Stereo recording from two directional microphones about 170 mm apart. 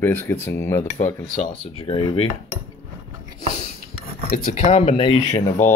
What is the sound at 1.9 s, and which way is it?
Speech, 35° left (ahead or behind).